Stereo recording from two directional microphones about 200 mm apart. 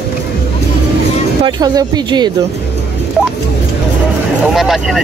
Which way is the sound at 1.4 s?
20° right (ahead or behind).